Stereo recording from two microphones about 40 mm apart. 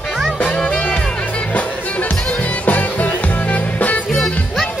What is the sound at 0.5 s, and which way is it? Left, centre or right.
Music, left.